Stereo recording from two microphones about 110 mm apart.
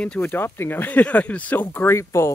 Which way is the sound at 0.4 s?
20° left (ahead or behind).